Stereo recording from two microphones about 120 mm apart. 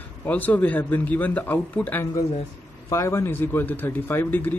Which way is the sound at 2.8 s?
25° left (ahead or behind).